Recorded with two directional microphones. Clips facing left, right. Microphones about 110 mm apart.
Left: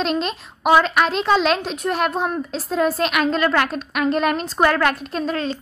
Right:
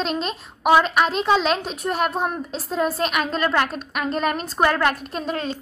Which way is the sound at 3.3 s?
5° right (ahead or behind).